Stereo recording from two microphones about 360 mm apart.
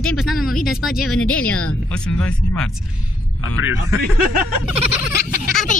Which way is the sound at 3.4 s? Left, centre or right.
Left.